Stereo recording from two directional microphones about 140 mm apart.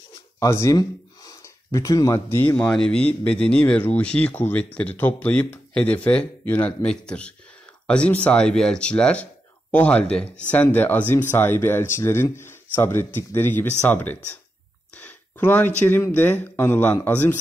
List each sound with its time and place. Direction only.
0.4 s speech: 20° left (ahead or behind)